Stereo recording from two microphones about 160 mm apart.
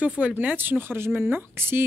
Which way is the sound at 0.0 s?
10° right (ahead or behind).